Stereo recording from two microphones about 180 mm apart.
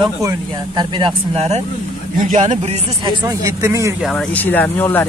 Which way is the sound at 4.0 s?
5° left (ahead or behind).